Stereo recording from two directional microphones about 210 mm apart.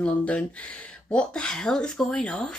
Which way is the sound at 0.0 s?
5° left (ahead or behind).